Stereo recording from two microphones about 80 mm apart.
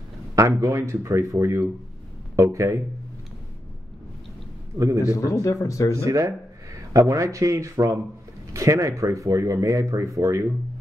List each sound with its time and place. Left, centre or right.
0.4 s speech: right
4.7 s a man's voice: right
5.0 s speech: left
5.9 s a man's voice: right